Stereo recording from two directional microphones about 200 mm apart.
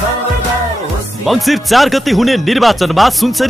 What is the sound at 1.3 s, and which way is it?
Speech, centre (ahead or behind).